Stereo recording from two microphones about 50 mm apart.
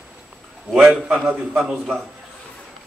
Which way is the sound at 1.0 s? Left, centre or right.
Right.